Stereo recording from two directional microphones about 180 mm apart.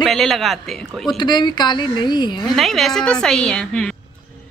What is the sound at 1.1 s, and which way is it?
A woman's voice, 25° left (ahead or behind).